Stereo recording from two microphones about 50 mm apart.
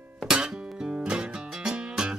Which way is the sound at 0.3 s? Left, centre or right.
Centre.